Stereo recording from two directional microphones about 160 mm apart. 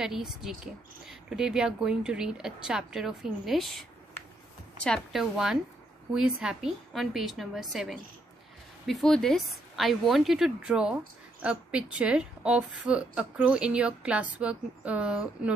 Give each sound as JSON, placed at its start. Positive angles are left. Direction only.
{"t": 0.0, "sound": "a woman's voice", "side_deg": -5}
{"t": 4.8, "sound": "a woman's voice", "side_deg": 0}